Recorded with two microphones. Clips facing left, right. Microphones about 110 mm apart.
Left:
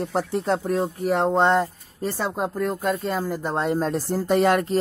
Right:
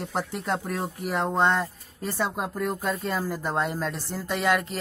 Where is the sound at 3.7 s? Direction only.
40° left (ahead or behind).